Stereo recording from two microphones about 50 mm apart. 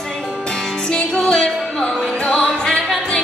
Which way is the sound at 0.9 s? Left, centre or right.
Left.